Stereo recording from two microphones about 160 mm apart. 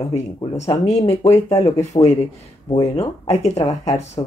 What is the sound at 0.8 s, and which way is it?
Speech, 40° left (ahead or behind).